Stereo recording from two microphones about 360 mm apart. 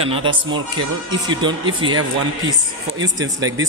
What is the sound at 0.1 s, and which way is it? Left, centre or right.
Speech, centre.